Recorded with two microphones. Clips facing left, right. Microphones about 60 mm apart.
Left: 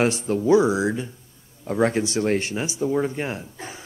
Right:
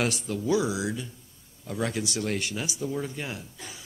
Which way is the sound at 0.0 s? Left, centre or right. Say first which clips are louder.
Left 7 dB; left.